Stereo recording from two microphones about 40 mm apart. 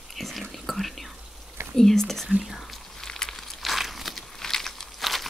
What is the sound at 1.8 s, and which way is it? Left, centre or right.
Speech, centre.